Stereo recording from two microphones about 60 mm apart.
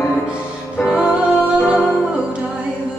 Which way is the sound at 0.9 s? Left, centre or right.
Centre.